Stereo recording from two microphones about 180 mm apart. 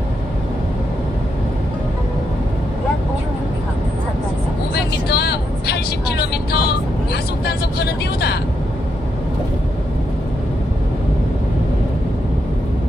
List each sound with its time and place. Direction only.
4.7 s vehicle: 65° left (ahead or behind)